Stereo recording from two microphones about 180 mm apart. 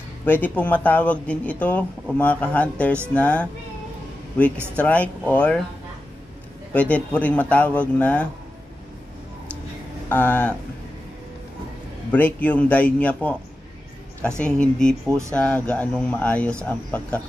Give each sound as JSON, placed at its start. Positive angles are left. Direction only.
{"t": 0.2, "sound": "speech", "side_deg": 10}
{"t": 4.7, "sound": "speech", "side_deg": 10}
{"t": 6.7, "sound": "speech", "side_deg": 10}
{"t": 10.0, "sound": "speech", "side_deg": 10}
{"t": 12.1, "sound": "speech", "side_deg": 10}
{"t": 14.4, "sound": "speech", "side_deg": 5}
{"t": 15.0, "sound": "speech", "side_deg": -15}
{"t": 15.3, "sound": "speech", "side_deg": 5}